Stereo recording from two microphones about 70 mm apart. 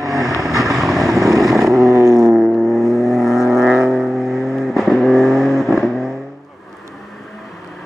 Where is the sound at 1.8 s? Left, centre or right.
Right.